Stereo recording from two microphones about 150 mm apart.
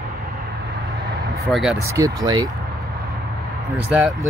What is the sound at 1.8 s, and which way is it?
Speech, 20° right (ahead or behind).